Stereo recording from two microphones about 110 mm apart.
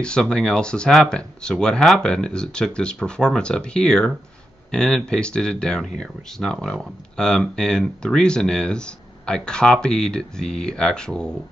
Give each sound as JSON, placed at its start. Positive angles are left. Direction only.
{"t": 0.0, "sound": "speech", "side_deg": 10}